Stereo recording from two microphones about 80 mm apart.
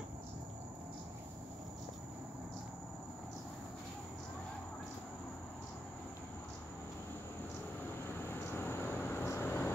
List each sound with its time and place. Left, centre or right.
8.1 s vehicle: left